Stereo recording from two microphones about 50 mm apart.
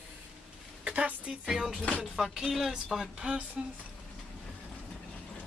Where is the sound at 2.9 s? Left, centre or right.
Centre.